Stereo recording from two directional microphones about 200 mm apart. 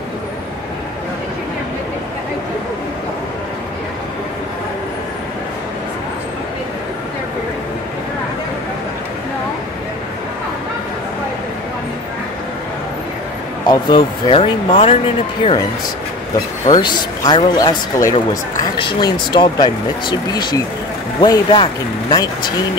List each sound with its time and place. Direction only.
13.7 s speech: 20° left (ahead or behind)
16.6 s speech: 20° left (ahead or behind)